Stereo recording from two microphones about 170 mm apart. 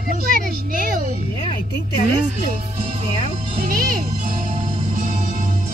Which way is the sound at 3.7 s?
55° right (ahead or behind).